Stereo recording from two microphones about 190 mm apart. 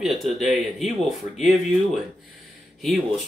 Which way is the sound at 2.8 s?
Centre (ahead or behind).